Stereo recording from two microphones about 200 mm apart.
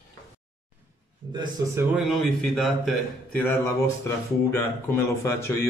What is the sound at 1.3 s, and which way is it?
Speech, 20° right (ahead or behind).